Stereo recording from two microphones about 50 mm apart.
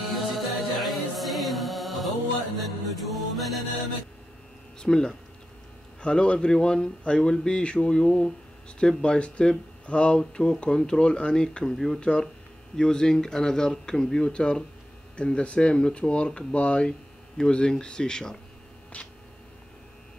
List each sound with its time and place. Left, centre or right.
0.1 s music: centre
4.7 s speech: centre
12.0 s speech: left
18.9 s a sound: left